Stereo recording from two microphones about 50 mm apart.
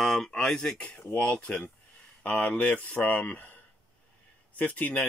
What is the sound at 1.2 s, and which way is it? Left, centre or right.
Speech, left.